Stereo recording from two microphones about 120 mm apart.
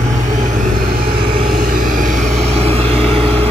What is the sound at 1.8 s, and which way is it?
Vehicle, 90° right.